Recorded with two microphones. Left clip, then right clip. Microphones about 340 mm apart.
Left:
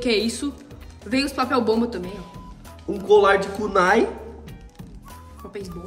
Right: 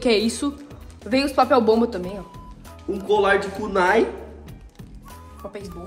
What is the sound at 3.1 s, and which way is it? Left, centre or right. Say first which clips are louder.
Speech: left 3 dB; centre.